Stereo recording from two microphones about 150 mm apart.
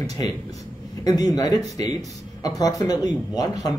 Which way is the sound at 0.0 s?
25° left (ahead or behind).